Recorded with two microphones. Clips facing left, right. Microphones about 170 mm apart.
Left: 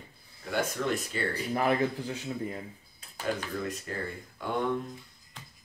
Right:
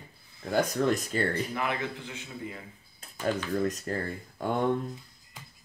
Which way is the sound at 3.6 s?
40° right (ahead or behind).